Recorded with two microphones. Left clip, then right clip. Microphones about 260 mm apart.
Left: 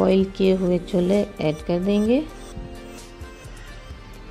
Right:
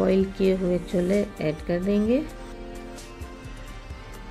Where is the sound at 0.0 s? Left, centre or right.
Centre.